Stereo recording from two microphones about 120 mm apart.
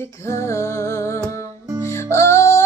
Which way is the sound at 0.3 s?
25° left (ahead or behind).